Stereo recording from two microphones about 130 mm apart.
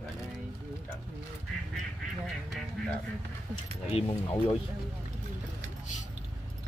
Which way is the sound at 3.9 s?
40° left (ahead or behind).